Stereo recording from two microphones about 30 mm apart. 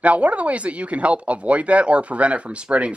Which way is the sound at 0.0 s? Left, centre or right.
Right.